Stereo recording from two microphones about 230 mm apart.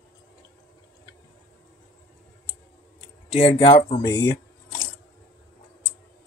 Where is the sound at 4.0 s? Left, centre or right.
Centre.